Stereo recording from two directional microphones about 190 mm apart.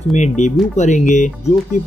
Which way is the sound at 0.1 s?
40° left (ahead or behind).